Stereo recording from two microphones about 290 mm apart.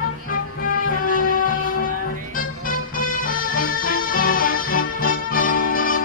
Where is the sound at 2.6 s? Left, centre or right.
Left.